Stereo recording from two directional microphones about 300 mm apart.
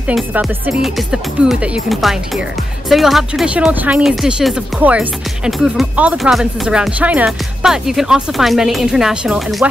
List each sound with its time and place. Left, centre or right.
0.0 s speech: centre